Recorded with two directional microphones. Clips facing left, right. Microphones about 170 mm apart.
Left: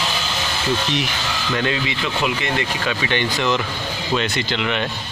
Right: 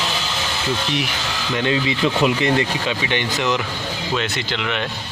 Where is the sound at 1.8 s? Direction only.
35° right (ahead or behind).